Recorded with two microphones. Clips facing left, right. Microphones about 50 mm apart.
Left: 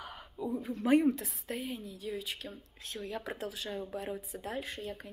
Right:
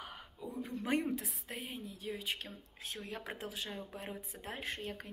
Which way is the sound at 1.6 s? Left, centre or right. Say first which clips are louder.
Left 5 dB; right.